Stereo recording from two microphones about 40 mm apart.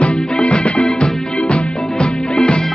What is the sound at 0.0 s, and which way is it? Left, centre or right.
Music, left.